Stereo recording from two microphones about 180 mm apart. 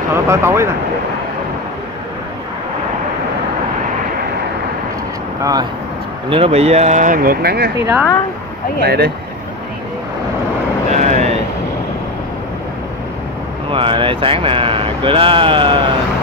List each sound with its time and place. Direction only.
0.1 s speech: 15° right (ahead or behind)
5.4 s speech: 20° right (ahead or behind)
6.3 s speech: 35° right (ahead or behind); by 7.7 s 60° right (ahead or behind)
8.8 s speech: 60° right (ahead or behind)
10.9 s vehicle: 40° right (ahead or behind)
13.7 s speech: 30° right (ahead or behind)